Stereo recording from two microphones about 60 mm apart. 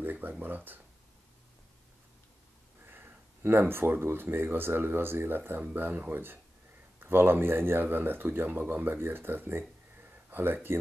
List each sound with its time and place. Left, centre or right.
0.0 s a sound: right
0.3 s speech: right
2.9 s speech: right